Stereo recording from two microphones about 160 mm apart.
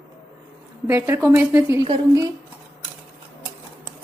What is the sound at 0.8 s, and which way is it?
A woman's voice, 15° right (ahead or behind).